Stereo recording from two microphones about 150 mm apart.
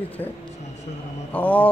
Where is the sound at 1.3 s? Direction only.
10° left (ahead or behind).